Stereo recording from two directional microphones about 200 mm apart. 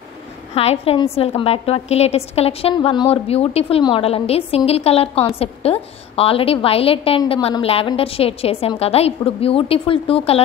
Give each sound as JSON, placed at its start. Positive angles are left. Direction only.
{"t": 0.6, "sound": "a woman's voice", "side_deg": 30}